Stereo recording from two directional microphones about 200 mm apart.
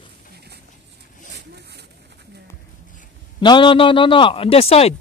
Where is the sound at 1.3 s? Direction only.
55° right (ahead or behind).